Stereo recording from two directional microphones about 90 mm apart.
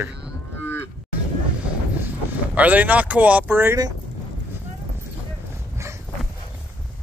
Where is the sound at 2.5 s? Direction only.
15° right (ahead or behind).